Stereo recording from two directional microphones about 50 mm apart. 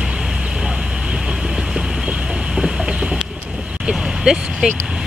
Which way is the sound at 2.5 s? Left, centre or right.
Centre.